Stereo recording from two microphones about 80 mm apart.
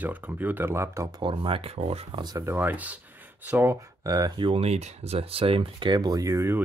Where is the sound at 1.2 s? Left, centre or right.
Right.